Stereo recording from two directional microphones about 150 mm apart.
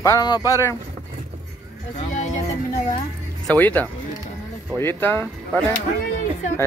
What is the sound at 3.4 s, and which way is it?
Speech, 10° left (ahead or behind).